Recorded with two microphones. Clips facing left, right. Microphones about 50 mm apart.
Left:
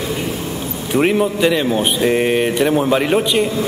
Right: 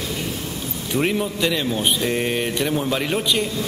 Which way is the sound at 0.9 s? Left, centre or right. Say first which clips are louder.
Left 7 dB; left.